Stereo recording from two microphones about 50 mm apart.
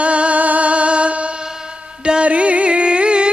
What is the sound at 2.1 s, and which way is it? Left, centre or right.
Carnatic music, right.